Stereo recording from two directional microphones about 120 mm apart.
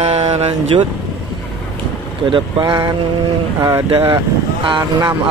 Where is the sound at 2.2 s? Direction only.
45° right (ahead or behind).